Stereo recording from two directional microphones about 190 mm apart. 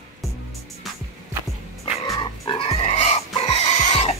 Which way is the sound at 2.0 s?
20° left (ahead or behind).